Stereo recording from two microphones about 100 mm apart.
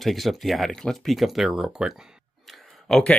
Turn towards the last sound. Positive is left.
turn(degrees=5)  # may be behind; listen again after turning